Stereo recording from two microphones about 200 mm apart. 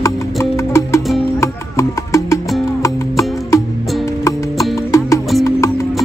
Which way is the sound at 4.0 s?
15° left (ahead or behind).